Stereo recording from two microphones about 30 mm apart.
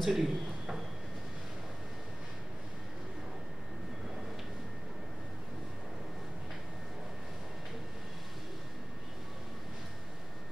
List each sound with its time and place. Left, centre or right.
0.0 s a man's voice: centre